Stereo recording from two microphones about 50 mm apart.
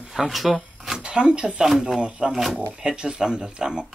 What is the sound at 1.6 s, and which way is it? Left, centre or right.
Speech, centre.